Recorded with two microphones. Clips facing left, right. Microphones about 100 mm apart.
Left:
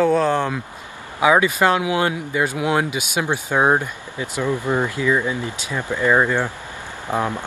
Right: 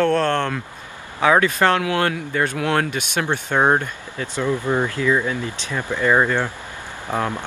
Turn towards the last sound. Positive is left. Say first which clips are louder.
# left 1 dB
turn(degrees=15)  # may be behind; listen again after turning